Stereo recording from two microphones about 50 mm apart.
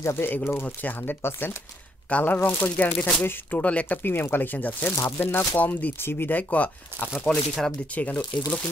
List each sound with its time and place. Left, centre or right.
0.0 s speech: left
0.7 s speech: left
1.2 s speech: left
2.0 s speech: left
4.0 s speech: left
5.3 s speech: left
5.6 s speech: left
5.9 s speech: left
7.2 s speech: centre
7.9 s speech: left